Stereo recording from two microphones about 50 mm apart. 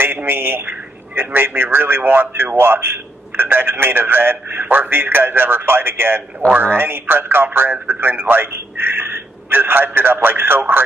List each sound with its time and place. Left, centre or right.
0.0 s a man's voice: right